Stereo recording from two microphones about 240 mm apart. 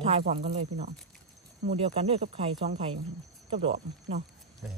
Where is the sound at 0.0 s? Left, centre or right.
Right.